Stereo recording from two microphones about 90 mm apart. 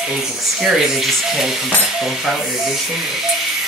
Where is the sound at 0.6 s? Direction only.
5° right (ahead or behind).